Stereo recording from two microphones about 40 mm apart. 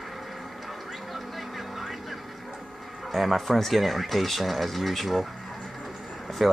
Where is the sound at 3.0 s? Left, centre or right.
Centre.